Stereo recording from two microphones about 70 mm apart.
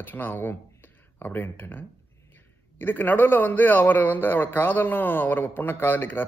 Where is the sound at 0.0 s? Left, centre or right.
Left.